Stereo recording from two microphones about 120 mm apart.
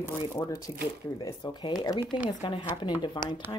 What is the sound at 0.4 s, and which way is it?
Speech, 25° left (ahead or behind).